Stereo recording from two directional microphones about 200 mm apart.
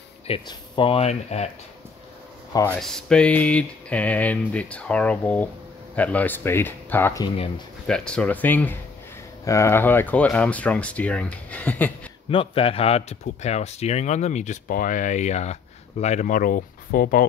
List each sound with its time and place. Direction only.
0.3 s speech: 25° left (ahead or behind)
2.5 s speech: 15° left (ahead or behind)
2.8 s speech: 5° left (ahead or behind)
12.3 s speech: 25° left (ahead or behind); by 17.2 s 45° left (ahead or behind)